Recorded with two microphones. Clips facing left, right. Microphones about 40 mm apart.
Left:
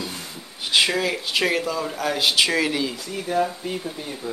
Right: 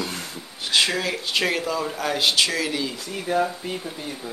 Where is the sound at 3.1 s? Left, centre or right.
Centre.